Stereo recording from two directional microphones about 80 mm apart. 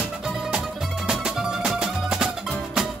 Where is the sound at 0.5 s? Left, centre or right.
Centre.